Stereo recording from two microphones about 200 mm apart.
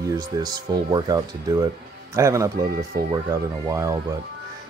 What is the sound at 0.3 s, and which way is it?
Speech, 20° right (ahead or behind).